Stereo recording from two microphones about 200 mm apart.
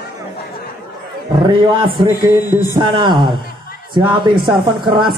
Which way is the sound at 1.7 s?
25° right (ahead or behind).